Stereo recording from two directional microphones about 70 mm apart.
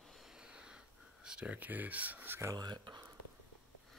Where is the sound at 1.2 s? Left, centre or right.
Centre.